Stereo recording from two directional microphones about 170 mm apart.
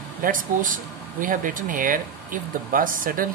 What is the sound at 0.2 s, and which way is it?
Speech, 50° right (ahead or behind).